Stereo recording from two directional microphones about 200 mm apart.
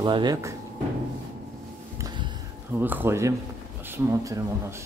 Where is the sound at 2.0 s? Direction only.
20° right (ahead or behind).